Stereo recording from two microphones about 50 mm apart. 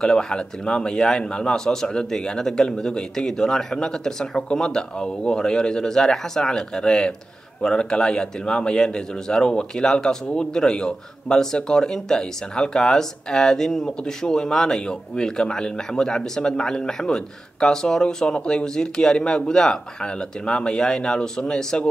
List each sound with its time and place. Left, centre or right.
0.0 s speech: centre